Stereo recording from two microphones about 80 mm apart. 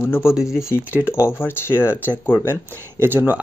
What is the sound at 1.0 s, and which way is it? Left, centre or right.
Speech, left.